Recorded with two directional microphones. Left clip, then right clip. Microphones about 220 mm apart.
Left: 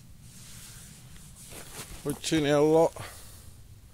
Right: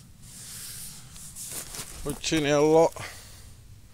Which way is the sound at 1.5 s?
50° right (ahead or behind).